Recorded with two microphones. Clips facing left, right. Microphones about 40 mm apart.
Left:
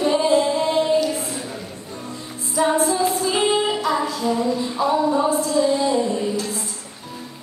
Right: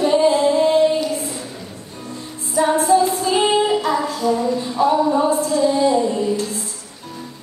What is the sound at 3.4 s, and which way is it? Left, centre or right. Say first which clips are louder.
Child singing: right 3 dB; right.